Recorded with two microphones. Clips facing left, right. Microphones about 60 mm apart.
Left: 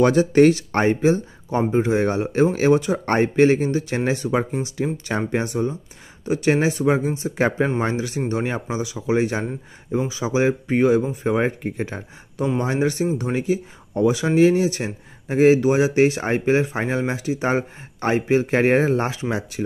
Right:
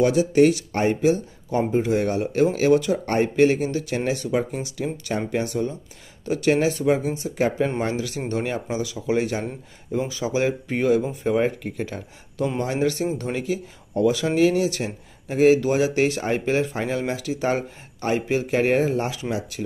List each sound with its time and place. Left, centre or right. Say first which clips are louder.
0.0 s speech: left 3 dB; left
7.8 s speech: left 2 dB; left